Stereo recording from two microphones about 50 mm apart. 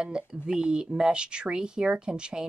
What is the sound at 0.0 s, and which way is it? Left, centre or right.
Speech, centre.